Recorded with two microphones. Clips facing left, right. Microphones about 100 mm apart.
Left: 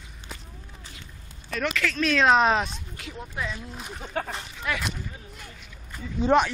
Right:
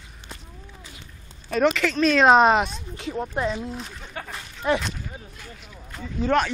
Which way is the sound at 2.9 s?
35° right (ahead or behind).